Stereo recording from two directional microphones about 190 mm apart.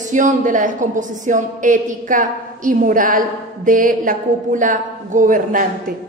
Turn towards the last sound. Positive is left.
turn(degrees=-45)  # may be behind; listen again after turning